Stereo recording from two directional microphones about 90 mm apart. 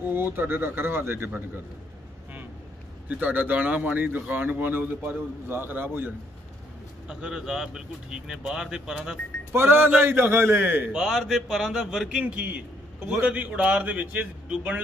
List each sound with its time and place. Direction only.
0.1 s a man's voice: 25° right (ahead or behind)
3.1 s a man's voice: 20° right (ahead or behind)
7.1 s speech: 10° right (ahead or behind)
9.5 s a man's voice: 25° right (ahead or behind)
10.9 s a man's voice: 5° right (ahead or behind)
12.2 s a man's voice: 15° right (ahead or behind)